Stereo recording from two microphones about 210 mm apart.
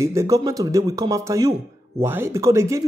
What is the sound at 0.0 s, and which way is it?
A man's voice, 15° right (ahead or behind).